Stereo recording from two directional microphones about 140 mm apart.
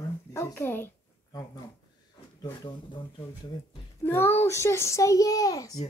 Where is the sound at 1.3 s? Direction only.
30° left (ahead or behind).